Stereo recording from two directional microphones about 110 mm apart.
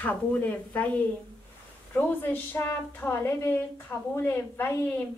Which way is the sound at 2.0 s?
20° left (ahead or behind).